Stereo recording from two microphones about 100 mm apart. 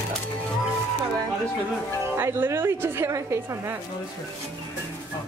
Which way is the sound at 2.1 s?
20° right (ahead or behind).